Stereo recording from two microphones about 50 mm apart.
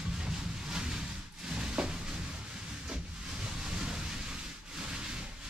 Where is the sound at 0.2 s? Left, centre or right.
Centre.